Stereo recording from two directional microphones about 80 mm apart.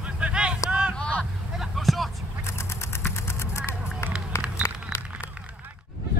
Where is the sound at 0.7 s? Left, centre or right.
Centre.